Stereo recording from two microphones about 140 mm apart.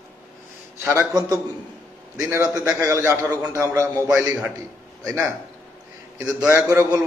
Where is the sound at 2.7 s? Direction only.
20° right (ahead or behind).